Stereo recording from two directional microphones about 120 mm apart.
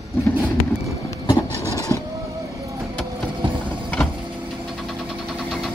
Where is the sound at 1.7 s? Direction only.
25° left (ahead or behind).